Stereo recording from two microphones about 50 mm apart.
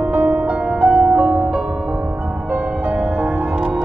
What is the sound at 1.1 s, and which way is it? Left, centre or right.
Music, right.